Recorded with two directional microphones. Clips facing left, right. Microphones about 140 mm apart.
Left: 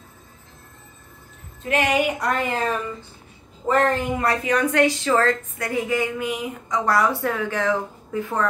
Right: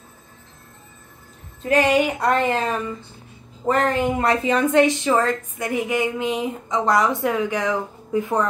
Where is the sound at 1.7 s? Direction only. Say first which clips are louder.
Right 3 dB; 35° right (ahead or behind).